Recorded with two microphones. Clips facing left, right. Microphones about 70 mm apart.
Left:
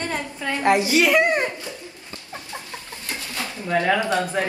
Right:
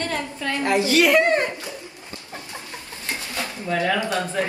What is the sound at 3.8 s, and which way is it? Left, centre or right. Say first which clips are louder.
Speech: left 1 dB; left.